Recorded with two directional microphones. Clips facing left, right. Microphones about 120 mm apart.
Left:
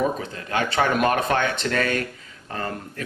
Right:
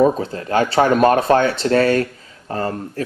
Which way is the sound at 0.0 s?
35° right (ahead or behind).